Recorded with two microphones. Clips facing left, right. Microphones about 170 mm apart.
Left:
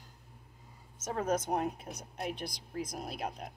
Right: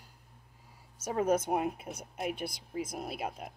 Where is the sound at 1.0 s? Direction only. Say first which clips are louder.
Right 4 dB; 10° right (ahead or behind).